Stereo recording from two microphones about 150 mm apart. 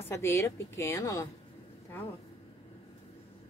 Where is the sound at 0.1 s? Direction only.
20° left (ahead or behind).